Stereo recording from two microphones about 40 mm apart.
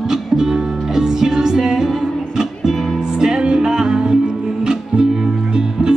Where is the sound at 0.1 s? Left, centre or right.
Centre.